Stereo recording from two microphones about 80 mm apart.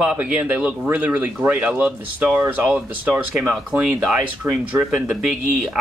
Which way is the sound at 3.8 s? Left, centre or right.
Centre.